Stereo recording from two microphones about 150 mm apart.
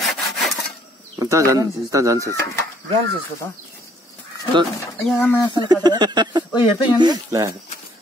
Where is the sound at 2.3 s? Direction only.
20° left (ahead or behind).